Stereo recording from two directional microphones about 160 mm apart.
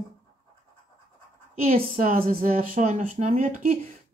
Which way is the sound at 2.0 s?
60° right (ahead or behind).